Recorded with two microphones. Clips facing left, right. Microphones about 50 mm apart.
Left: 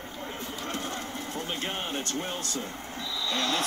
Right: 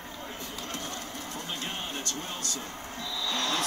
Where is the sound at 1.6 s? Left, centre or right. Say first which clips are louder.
Left 3 dB; left.